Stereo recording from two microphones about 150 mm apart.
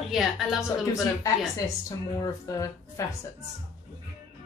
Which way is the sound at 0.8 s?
20° left (ahead or behind).